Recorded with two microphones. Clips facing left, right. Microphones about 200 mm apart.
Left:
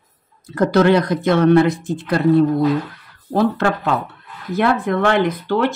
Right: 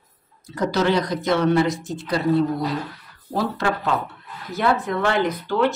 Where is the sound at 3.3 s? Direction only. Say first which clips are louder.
Left 6 dB; 60° left (ahead or behind).